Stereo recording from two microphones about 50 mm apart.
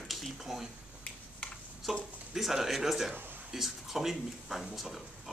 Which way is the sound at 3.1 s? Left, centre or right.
Right.